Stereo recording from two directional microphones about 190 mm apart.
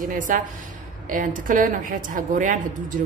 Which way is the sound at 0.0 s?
45° right (ahead or behind).